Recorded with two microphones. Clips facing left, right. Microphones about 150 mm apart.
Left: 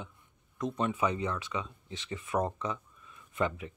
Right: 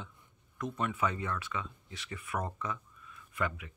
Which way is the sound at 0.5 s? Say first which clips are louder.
Left 3 dB; 20° left (ahead or behind).